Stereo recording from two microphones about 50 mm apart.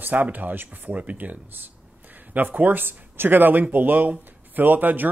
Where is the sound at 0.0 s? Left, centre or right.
Right.